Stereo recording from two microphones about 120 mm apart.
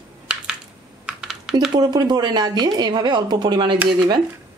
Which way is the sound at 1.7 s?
35° right (ahead or behind).